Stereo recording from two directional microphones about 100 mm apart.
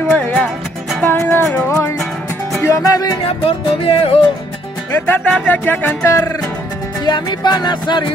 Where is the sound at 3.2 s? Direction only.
70° left (ahead or behind).